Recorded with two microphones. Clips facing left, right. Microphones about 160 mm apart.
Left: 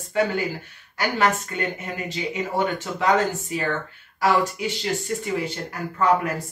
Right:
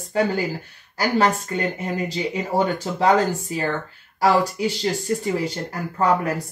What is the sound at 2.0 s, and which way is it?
Speech, 35° right (ahead or behind).